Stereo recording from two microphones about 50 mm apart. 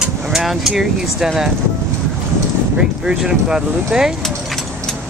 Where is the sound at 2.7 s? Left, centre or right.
Centre.